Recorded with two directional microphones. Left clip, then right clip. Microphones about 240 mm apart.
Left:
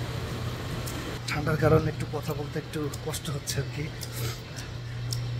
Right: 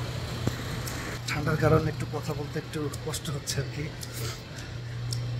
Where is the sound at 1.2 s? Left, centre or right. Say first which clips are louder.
Left 1 dB; centre.